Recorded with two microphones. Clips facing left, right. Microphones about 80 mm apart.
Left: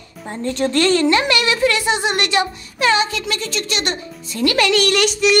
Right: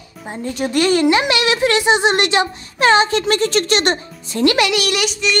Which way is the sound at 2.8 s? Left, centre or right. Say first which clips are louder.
Right 4 dB; right.